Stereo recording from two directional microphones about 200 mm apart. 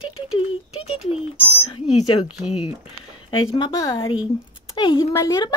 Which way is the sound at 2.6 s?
25° left (ahead or behind).